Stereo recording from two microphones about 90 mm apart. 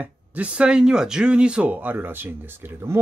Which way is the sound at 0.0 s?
15° right (ahead or behind).